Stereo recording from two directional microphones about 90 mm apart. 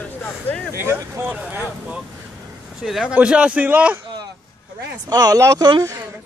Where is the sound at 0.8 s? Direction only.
25° right (ahead or behind).